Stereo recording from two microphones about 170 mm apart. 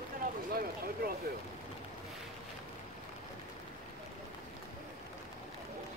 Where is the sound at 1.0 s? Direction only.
60° right (ahead or behind).